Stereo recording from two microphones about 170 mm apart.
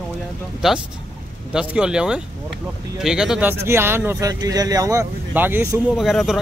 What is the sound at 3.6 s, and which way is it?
Speech, 15° right (ahead or behind).